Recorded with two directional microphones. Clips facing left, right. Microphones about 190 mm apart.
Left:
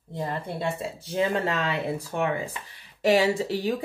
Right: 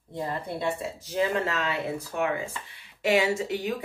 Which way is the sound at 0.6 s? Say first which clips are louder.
Even; 30° left (ahead or behind).